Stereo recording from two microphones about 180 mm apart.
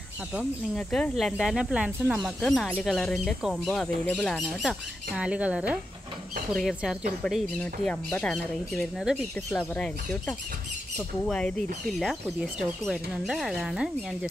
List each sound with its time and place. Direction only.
0.4 s speech: centre (ahead or behind)